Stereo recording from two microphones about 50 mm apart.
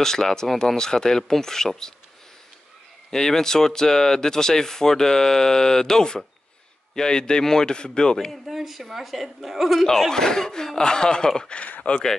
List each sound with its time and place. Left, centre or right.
0.0 s speech: centre
3.1 s speech: centre
8.3 s a woman's voice: centre
9.8 s speech: centre; by 12.0 s left